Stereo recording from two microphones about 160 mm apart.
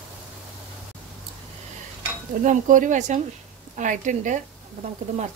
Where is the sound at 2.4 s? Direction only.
50° right (ahead or behind).